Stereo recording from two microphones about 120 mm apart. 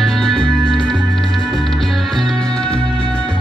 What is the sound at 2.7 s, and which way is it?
Music, 50° left (ahead or behind).